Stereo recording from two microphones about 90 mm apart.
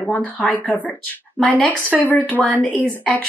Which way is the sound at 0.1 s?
15° left (ahead or behind).